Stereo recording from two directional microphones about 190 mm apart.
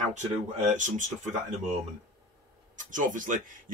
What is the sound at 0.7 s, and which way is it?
Speech, 40° right (ahead or behind).